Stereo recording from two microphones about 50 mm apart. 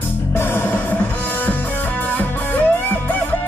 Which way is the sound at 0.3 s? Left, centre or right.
Left.